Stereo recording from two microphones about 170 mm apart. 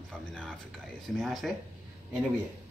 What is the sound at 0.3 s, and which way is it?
Speech, 5° left (ahead or behind).